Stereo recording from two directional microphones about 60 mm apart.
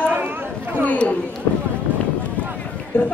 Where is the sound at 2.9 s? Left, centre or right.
Left.